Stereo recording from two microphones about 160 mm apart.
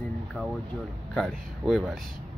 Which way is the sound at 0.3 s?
Centre (ahead or behind).